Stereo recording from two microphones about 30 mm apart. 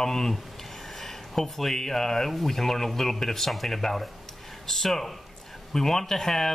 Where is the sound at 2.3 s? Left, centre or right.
Centre.